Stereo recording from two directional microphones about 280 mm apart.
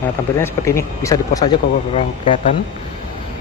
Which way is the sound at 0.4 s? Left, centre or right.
Centre.